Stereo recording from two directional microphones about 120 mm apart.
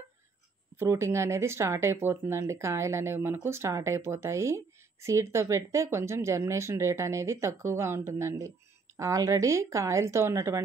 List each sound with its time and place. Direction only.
0.7 s speech: 25° right (ahead or behind)